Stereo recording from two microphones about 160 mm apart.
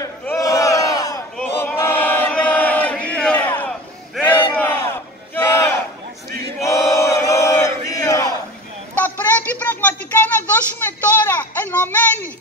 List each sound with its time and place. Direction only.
0.4 s battle cry: 20° left (ahead or behind)
1.4 s chant: 10° left (ahead or behind)
4.3 s battle cry: 10° left (ahead or behind)
8.9 s a sound: 10° left (ahead or behind)